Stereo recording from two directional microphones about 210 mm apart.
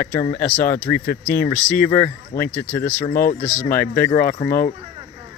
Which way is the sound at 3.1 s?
45° left (ahead or behind).